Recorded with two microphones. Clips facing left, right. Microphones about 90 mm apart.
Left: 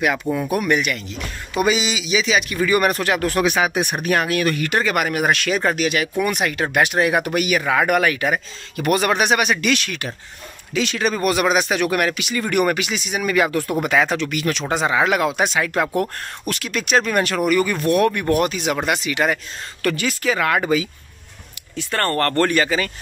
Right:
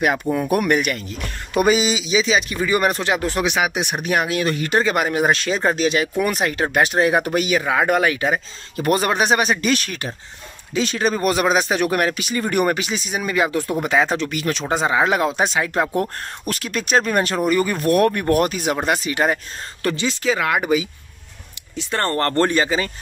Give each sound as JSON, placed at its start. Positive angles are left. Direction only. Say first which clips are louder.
{"t": 0.5, "sound": "speech", "louder": "right 2 dB", "side_deg": -50}
{"t": 0.7, "sound": "a man's voice", "louder": "right 1 dB", "side_deg": -40}
{"t": 13.3, "sound": "a man's voice", "louder": "left 1 dB", "side_deg": -20}